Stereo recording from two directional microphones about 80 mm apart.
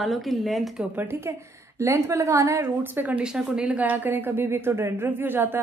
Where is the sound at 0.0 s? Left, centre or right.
Centre.